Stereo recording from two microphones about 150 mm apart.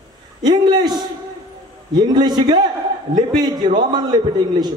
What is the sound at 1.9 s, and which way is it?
A man's voice, 30° right (ahead or behind).